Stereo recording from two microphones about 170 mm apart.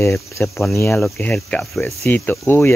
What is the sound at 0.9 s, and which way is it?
Speech, 5° left (ahead or behind).